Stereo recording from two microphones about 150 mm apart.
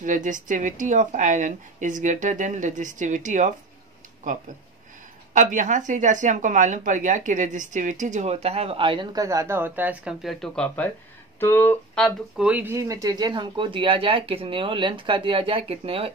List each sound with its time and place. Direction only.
0.0 s speech: 60° right (ahead or behind)
5.3 s speech: 55° right (ahead or behind); by 12.4 s 5° left (ahead or behind)
12.4 s speech: 10° right (ahead or behind); by 16.1 s 40° right (ahead or behind)